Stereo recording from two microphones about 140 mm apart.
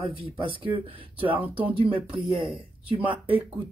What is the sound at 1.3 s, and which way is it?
Speech, 10° right (ahead or behind).